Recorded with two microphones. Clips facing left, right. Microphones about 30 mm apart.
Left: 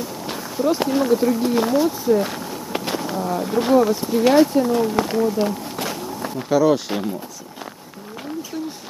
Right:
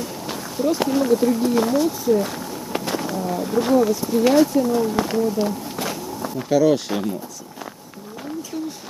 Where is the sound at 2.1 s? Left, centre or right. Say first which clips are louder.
Left 1 dB; left.